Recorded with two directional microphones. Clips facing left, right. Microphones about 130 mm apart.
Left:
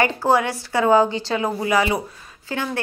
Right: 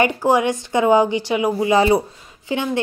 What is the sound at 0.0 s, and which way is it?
A woman's voice, 15° right (ahead or behind).